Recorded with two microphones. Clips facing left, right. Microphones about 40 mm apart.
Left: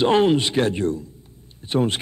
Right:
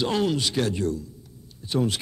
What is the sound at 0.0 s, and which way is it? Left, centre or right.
A man's voice, left.